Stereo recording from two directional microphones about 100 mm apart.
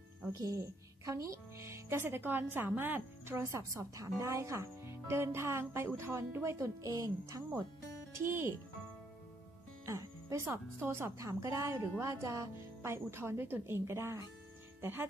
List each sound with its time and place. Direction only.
0.3 s a woman's voice: 35° right (ahead or behind)
3.7 s a woman's voice: 35° right (ahead or behind)
9.8 s speech: 30° right (ahead or behind)